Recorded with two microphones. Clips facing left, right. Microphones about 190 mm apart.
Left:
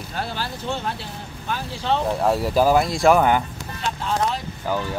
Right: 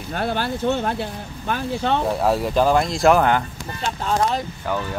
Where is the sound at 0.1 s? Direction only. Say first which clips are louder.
Right 6 dB; 55° right (ahead or behind).